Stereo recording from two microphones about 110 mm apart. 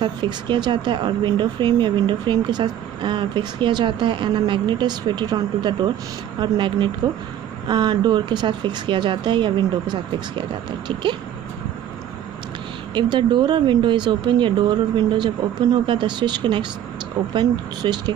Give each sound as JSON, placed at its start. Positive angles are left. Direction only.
{"t": 0.0, "sound": "speech", "side_deg": -45}
{"t": 12.9, "sound": "speech", "side_deg": -45}